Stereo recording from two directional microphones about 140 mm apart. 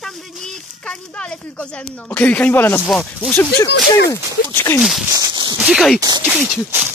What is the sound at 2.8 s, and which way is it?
Speech, centre (ahead or behind).